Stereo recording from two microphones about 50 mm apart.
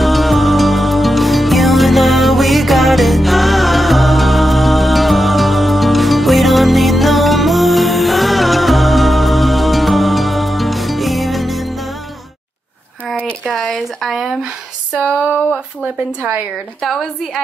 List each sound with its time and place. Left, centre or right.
0.0 s music: centre
13.5 s a sound: centre
15.8 s speech: right